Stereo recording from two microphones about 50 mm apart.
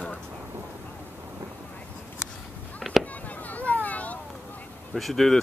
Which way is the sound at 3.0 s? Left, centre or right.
Left.